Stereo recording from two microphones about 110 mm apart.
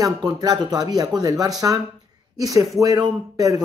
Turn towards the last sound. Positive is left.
turn(degrees=-35)  # may be behind; listen again after turning